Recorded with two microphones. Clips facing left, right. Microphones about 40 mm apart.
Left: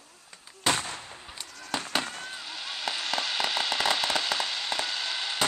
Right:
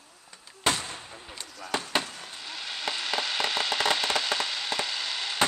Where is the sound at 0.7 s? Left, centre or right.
Left.